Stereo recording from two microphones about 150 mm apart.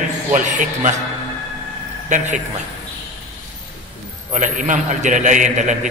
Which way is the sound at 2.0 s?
55° right (ahead or behind).